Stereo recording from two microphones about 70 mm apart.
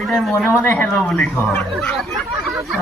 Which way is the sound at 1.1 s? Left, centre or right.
Centre.